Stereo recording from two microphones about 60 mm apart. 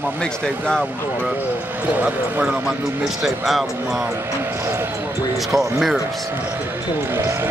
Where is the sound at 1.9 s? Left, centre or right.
Right.